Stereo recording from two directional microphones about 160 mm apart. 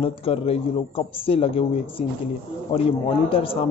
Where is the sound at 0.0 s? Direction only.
35° left (ahead or behind).